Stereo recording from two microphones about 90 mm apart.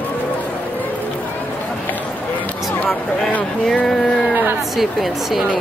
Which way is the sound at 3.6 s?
5° left (ahead or behind).